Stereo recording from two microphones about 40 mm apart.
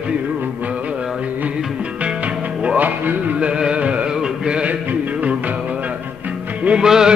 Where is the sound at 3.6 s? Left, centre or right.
Right.